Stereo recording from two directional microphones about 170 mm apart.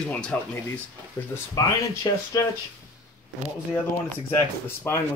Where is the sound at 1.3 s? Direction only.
20° left (ahead or behind).